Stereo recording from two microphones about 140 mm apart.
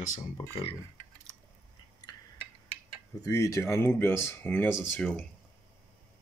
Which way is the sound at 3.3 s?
20° left (ahead or behind).